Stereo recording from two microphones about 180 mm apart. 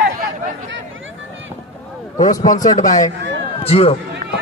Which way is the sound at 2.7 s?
20° left (ahead or behind).